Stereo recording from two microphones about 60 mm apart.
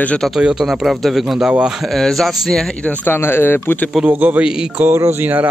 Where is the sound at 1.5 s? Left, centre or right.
Centre.